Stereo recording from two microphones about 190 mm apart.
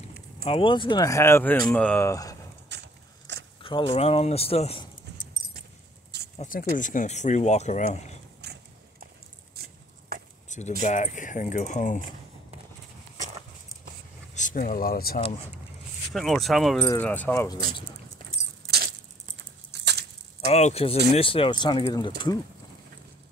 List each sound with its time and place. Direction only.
0.0 s speech: 30° left (ahead or behind); by 2.3 s 15° left (ahead or behind)
2.7 s horse: 65° right (ahead or behind)
3.3 s a sound: 65° right (ahead or behind)
3.6 s speech: 25° left (ahead or behind)
6.3 s speech: 40° left (ahead or behind)
8.4 s a sound: 60° right (ahead or behind)
9.6 s chop: 55° right (ahead or behind)
10.8 s speech: 40° left (ahead or behind)
14.3 s speech: 45° left (ahead or behind)
16.1 s speech: centre (ahead or behind)
16.8 s speech: 10° left (ahead or behind)
19.7 s a sound: 65° right (ahead or behind)
20.4 s speech: 35° left (ahead or behind)